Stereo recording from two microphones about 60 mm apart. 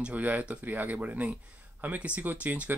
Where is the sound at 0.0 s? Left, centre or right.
Right.